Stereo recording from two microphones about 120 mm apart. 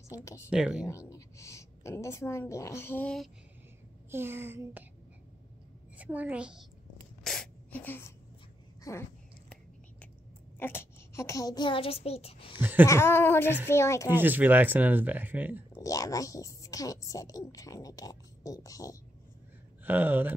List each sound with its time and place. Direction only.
0.1 s a woman's voice: 25° left (ahead or behind)
0.5 s speech: 10° right (ahead or behind)
0.8 s a woman's voice: 25° left (ahead or behind)
4.1 s speech: 20° right (ahead or behind)
5.9 s speech: 15° right (ahead or behind)
7.3 s sneeze: 5° left (ahead or behind)
7.7 s speech: 15° left (ahead or behind)
8.9 s a woman's voice: 25° left (ahead or behind)
10.6 s a child's voice: 20° left (ahead or behind); by 12.5 s 50° left (ahead or behind)
12.5 s speech: 15° right (ahead or behind)
12.8 s a woman's voice: 20° left (ahead or behind)
14.1 s speech: 15° right (ahead or behind)
15.8 s a woman's voice: 30° left (ahead or behind)
19.8 s speech: 15° right (ahead or behind)